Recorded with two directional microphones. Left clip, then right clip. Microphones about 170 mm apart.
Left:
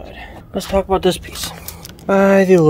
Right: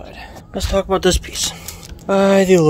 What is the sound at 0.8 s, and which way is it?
Speech, 10° right (ahead or behind).